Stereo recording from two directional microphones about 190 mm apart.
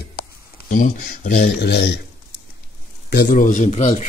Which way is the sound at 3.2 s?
40° left (ahead or behind).